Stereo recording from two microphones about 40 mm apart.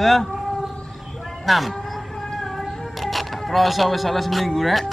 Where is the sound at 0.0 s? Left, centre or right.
Centre.